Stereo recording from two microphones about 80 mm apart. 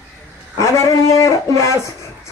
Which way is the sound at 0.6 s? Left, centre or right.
Left.